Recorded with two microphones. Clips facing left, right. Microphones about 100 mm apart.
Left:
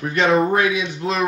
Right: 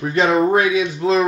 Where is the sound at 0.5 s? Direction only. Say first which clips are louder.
Right 3 dB; 25° right (ahead or behind).